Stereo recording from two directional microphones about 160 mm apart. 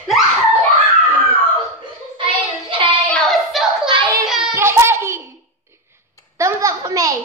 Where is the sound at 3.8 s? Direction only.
30° right (ahead or behind).